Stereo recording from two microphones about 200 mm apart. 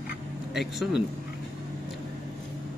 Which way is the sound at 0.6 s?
Centre (ahead or behind).